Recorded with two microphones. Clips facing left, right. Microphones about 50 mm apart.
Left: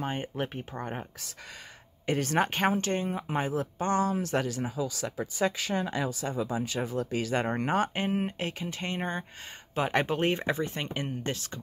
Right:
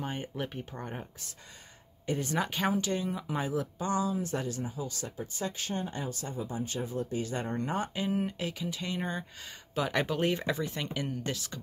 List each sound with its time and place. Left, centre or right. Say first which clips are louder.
0.0 s speech: left 3 dB; left
2.0 s speech: left 4 dB; left
2.3 s speech: left 4 dB; left